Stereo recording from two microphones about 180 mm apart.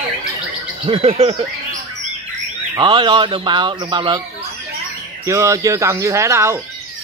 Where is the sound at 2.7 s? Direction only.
25° right (ahead or behind).